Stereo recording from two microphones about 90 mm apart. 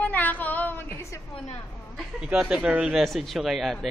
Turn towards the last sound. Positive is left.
turn(degrees=0)  # may be behind; listen again after turning